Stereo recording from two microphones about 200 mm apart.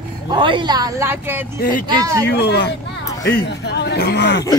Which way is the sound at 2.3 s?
55° left (ahead or behind).